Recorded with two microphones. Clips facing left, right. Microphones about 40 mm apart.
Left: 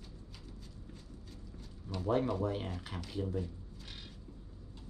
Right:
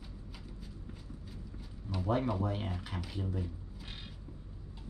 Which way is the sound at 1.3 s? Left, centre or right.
Centre.